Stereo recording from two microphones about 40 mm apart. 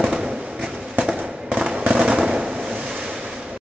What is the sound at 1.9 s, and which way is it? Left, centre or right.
Fireworks, right.